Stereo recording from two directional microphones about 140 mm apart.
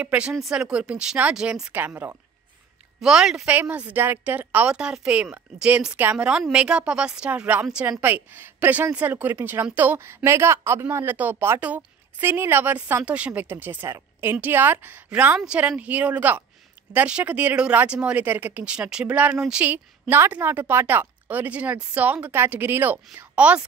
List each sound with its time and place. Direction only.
0.0 s a woman's voice: 10° right (ahead or behind)
3.0 s a woman's voice: 5° right (ahead or behind)